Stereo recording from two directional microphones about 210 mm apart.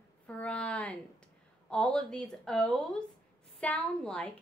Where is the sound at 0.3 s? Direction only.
5° left (ahead or behind).